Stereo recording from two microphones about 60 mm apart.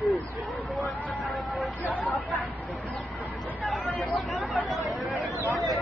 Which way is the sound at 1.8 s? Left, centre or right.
Left.